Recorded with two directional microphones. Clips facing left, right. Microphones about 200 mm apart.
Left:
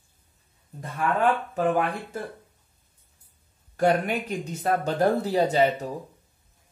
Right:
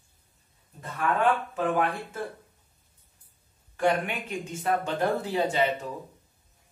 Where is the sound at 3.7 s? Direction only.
40° left (ahead or behind).